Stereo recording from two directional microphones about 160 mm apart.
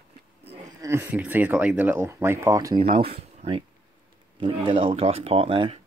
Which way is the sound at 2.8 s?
35° right (ahead or behind).